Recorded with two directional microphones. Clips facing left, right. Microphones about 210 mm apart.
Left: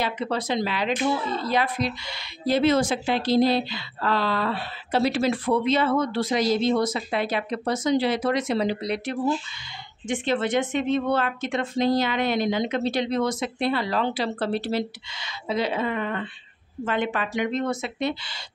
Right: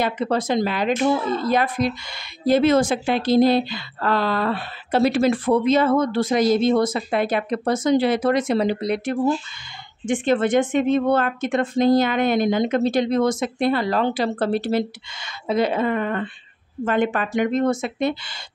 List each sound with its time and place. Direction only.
0.0 s speech: 50° right (ahead or behind)